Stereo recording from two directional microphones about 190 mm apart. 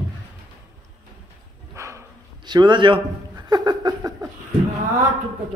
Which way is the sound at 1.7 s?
15° right (ahead or behind).